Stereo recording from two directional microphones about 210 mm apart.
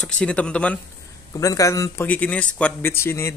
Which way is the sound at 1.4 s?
15° left (ahead or behind).